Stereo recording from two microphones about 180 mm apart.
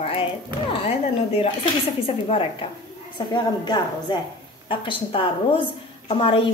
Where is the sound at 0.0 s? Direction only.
30° left (ahead or behind).